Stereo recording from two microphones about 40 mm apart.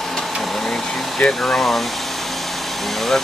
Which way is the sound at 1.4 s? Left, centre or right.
Centre.